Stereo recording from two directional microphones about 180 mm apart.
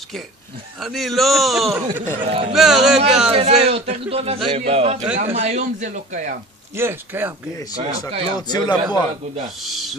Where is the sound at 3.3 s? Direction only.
35° right (ahead or behind).